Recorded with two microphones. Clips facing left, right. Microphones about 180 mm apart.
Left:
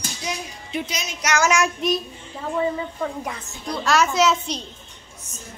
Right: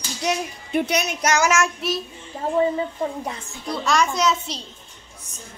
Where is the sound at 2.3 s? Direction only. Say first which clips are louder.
Right 4 dB; 45° right (ahead or behind).